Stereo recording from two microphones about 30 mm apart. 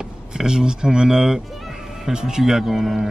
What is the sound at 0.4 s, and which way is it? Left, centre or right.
Speech, right.